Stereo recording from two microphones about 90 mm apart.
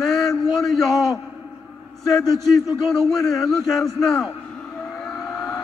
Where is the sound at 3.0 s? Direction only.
5° left (ahead or behind).